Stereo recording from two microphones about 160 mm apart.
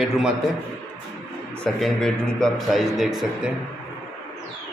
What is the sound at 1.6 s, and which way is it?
Speech, 5° left (ahead or behind).